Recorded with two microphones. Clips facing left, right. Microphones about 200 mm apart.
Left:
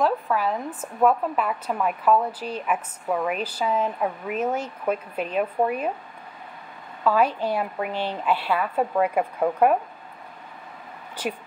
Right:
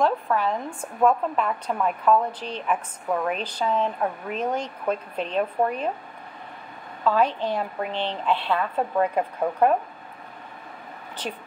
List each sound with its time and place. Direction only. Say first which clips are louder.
0.0 s a woman's voice: even; 5° left (ahead or behind)
7.1 s a woman's voice: left 1 dB; 10° left (ahead or behind)